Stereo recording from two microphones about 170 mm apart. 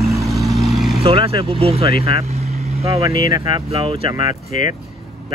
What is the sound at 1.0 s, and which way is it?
Speech, 35° right (ahead or behind).